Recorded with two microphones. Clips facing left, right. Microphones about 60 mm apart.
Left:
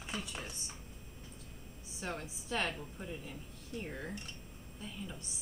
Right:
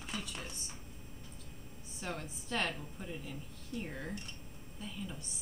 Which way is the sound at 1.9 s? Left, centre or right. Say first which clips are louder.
Even; centre.